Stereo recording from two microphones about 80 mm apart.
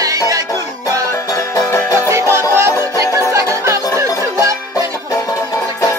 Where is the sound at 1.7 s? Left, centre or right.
Left.